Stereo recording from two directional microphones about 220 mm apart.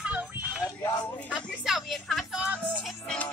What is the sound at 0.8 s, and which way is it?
Speech, 15° left (ahead or behind).